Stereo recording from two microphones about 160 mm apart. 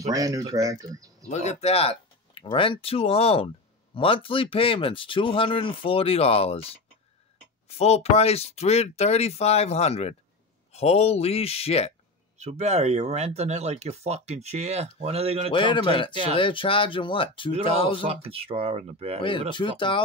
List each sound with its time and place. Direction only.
0.1 s speech: 20° right (ahead or behind)
1.3 s speech: 45° left (ahead or behind)
12.4 s speech: 45° right (ahead or behind)
15.5 s speech: 30° left (ahead or behind)
18.0 s speech: 35° right (ahead or behind)
19.5 s speech: 30° left (ahead or behind)